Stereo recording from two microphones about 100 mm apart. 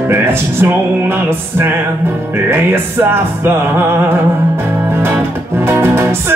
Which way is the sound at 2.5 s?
25° right (ahead or behind).